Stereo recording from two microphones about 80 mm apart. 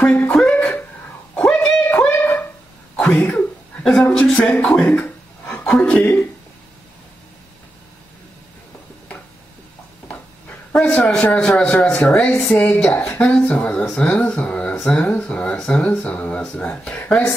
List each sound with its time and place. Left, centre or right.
0.0 s a sound: centre
3.0 s cough: left
4.2 s speech: centre
10.7 s speech: centre